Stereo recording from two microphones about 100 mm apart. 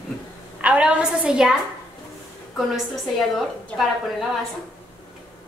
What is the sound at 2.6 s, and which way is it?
A woman's voice, centre (ahead or behind).